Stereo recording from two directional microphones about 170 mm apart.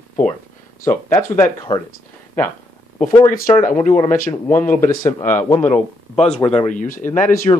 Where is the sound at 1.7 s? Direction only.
25° left (ahead or behind).